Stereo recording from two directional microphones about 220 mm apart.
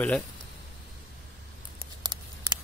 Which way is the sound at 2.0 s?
20° right (ahead or behind).